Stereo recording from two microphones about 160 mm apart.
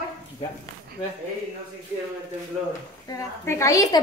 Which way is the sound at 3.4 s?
20° left (ahead or behind).